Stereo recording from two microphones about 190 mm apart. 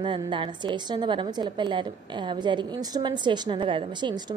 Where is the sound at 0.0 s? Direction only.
25° right (ahead or behind).